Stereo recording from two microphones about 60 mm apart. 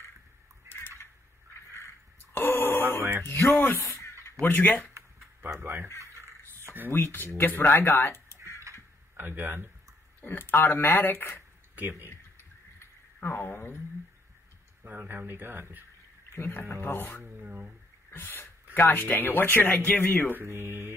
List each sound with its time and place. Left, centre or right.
2.3 s a sound: left
3.0 s a sound: right
3.3 s speech: left
5.6 s speech: right
6.9 s speech: left
9.1 s speech: right
10.2 s speech: left
12.1 s a sound: left
14.8 s speech: right
16.3 s speech: left
17.2 s speech: right
18.1 s speech: left
20.4 s speech: right